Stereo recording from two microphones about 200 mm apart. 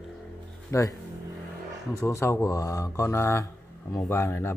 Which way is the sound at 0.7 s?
15° left (ahead or behind).